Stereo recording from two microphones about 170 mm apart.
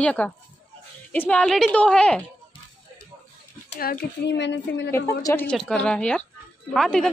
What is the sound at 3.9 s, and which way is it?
A woman's voice, 70° left (ahead or behind).